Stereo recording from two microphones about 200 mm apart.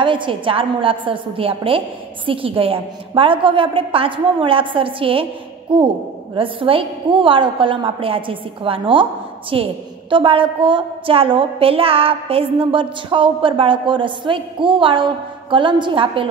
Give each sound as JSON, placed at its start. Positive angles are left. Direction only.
{"t": 0.0, "sound": "a woman's voice", "side_deg": -25}